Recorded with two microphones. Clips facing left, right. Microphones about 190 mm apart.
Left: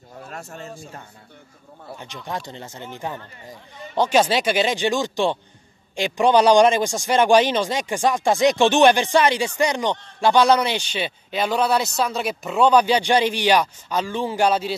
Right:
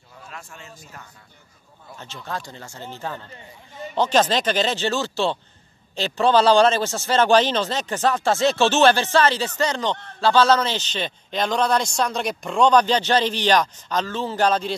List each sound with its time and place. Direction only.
0.3 s speech: 40° left (ahead or behind)
2.0 s a man's voice: 15° left (ahead or behind)